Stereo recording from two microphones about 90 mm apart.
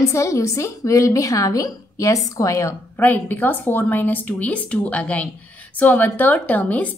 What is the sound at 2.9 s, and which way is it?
A woman's voice, 20° left (ahead or behind).